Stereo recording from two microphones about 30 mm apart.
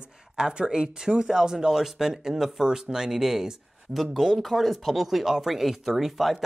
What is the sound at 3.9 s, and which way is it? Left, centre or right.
Speech, centre.